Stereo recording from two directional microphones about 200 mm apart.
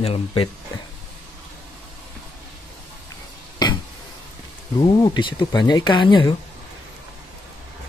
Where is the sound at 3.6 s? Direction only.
20° left (ahead or behind).